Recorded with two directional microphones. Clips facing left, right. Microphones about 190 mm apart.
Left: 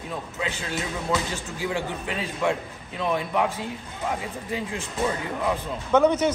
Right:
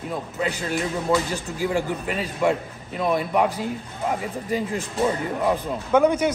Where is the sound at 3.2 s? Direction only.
40° right (ahead or behind).